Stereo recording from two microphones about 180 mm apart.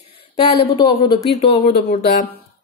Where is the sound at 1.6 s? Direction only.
55° left (ahead or behind).